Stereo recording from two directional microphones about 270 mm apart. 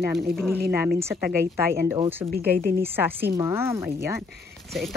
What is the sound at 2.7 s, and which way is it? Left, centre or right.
A woman's voice, centre.